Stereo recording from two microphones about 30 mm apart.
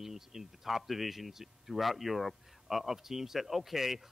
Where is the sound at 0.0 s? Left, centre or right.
Centre.